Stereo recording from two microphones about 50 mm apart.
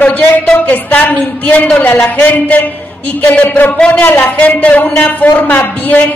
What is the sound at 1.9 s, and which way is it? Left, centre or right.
Speech, left.